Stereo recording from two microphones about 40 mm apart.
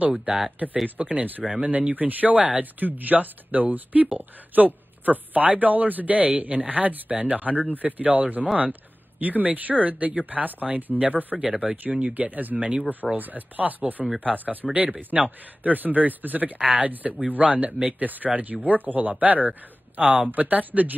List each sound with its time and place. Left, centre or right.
0.0 s a man's voice: right
11.3 s speech: centre
11.6 s a man's voice: right